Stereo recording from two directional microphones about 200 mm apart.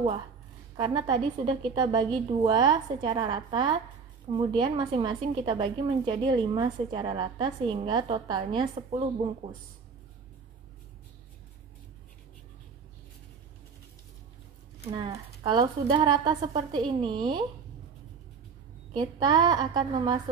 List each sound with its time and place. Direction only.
0.7 s a woman's voice: 20° right (ahead or behind)
14.9 s a woman's voice: 20° right (ahead or behind)
18.9 s a woman's voice: 20° right (ahead or behind)